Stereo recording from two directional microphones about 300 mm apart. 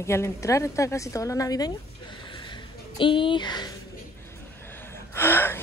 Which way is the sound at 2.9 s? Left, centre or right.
Centre.